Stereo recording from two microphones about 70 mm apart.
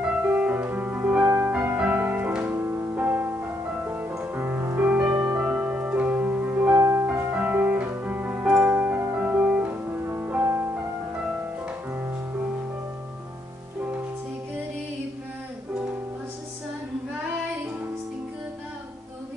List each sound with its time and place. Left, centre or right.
0.0 s music: centre
2.5 s music: right
3.0 s music: right
6.8 s music: right; by 9.8 s centre
10.0 s music: right